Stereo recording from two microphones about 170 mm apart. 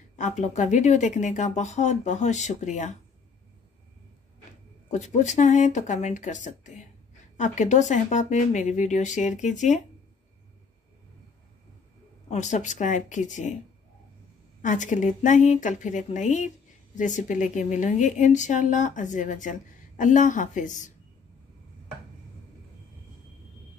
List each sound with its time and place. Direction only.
0.1 s speech: 45° left (ahead or behind)
4.9 s speech: 45° left (ahead or behind)
12.3 s speech: 45° left (ahead or behind)
14.6 s speech: 45° left (ahead or behind)